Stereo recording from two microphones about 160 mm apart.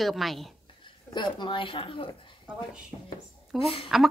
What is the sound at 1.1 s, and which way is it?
Speech, 30° left (ahead or behind).